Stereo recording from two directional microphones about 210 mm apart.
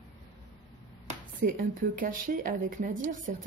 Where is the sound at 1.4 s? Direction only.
40° right (ahead or behind).